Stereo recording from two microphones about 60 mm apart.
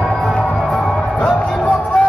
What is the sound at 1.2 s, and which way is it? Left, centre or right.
Music, left.